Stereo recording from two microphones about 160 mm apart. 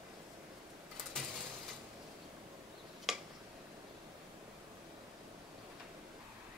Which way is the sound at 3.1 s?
Centre (ahead or behind).